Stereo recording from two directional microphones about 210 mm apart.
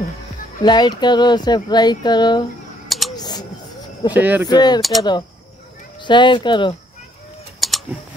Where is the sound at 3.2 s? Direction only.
20° left (ahead or behind).